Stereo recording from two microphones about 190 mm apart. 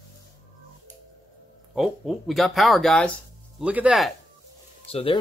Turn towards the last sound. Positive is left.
turn(degrees=30)  # may be behind; listen again after turning